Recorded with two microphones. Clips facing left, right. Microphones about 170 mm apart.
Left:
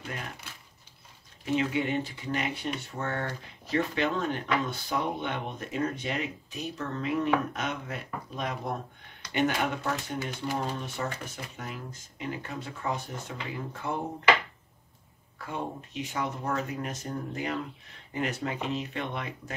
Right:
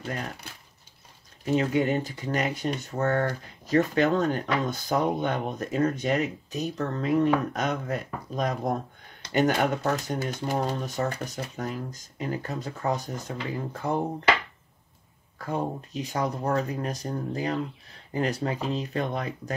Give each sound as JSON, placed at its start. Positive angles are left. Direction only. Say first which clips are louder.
{"t": 1.4, "sound": "speech", "louder": "right 4 dB", "side_deg": -40}
{"t": 15.3, "sound": "speech", "louder": "right 6 dB", "side_deg": -40}